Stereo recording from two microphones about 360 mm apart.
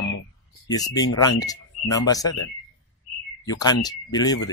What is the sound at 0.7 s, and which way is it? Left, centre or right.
Speech, centre.